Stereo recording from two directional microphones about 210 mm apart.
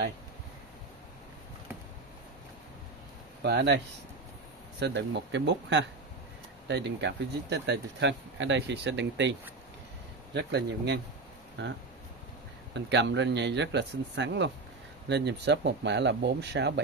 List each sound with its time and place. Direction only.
3.4 s speech: 55° right (ahead or behind)
12.7 s speech: 55° right (ahead or behind)